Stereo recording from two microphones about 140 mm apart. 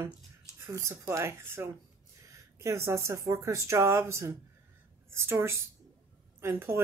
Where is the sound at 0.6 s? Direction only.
20° right (ahead or behind).